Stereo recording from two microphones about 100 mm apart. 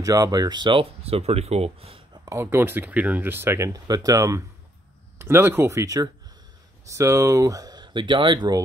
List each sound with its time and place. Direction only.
0.0 s speech: 40° right (ahead or behind); by 2.0 s 75° right (ahead or behind)
2.2 s speech: 25° right (ahead or behind)
5.2 s speech: 25° right (ahead or behind); by 8.6 s 45° right (ahead or behind)